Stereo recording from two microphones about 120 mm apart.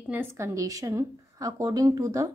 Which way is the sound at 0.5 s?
30° right (ahead or behind).